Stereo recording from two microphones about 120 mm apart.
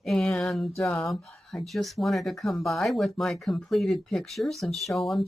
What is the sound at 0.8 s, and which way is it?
Speech, 20° left (ahead or behind).